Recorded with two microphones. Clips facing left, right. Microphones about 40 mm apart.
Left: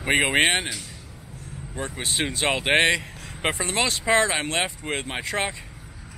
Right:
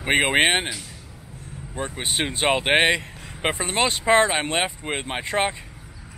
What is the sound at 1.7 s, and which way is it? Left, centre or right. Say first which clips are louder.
Speech: right 1 dB; centre.